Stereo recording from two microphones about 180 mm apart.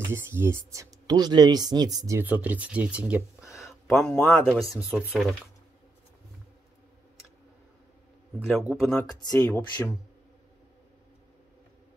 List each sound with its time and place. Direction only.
0.1 s speech: 15° right (ahead or behind)
8.4 s speech: 5° right (ahead or behind)
9.0 s speech: 20° left (ahead or behind)